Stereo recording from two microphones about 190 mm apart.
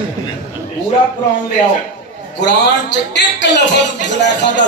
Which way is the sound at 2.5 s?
65° left (ahead or behind).